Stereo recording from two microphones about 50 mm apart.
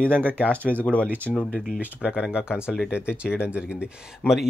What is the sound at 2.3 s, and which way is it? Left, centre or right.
Speech, centre.